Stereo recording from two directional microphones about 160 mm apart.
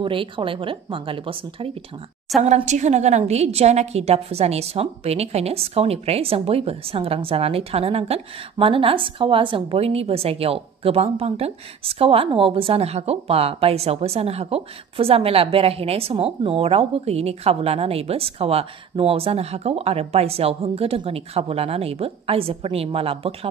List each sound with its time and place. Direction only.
0.0 s a woman's voice: 35° right (ahead or behind)
2.4 s a woman's voice: 45° right (ahead or behind)